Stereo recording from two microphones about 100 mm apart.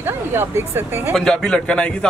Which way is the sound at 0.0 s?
25° right (ahead or behind).